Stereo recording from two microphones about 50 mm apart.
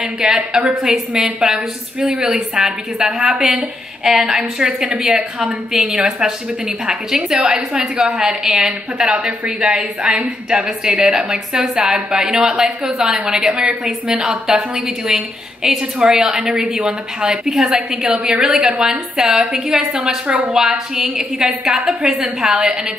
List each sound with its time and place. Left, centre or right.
0.0 s a woman's voice: centre